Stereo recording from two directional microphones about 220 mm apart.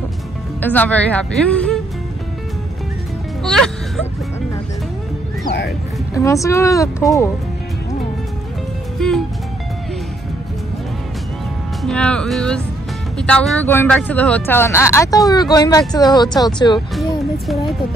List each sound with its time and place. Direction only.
0.6 s speech: 10° left (ahead or behind)
3.4 s music: centre (ahead or behind)
6.1 s speech: 15° left (ahead or behind)
8.9 s speech: centre (ahead or behind)
11.8 s speech: 5° left (ahead or behind); by 16.8 s 20° left (ahead or behind)